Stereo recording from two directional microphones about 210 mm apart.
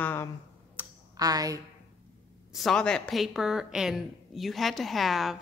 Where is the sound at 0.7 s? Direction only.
15° right (ahead or behind).